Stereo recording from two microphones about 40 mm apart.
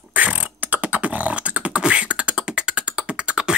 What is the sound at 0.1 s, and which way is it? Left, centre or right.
Beatboxing, right.